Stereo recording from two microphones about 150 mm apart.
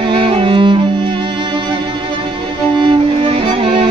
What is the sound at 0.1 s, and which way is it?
Music, 35° right (ahead or behind).